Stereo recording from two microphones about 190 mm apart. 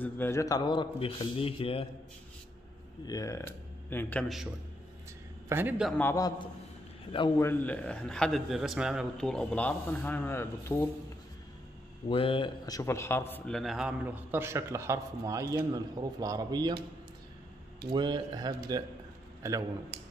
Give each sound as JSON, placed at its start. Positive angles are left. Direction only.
{"t": 0.0, "sound": "a man's voice", "side_deg": 10}
{"t": 3.1, "sound": "a man's voice", "side_deg": 15}
{"t": 5.5, "sound": "a man's voice", "side_deg": -10}
{"t": 5.9, "sound": "a man's voice", "side_deg": 15}
{"t": 7.3, "sound": "a man's voice", "side_deg": 10}
{"t": 12.1, "sound": "a man's voice", "side_deg": 30}
{"t": 17.8, "sound": "speech", "side_deg": -25}